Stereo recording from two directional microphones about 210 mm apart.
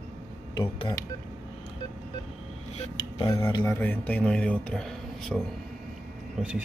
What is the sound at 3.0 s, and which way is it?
Speech, 20° left (ahead or behind).